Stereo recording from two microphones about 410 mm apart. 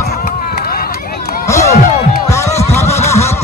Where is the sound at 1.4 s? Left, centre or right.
Centre.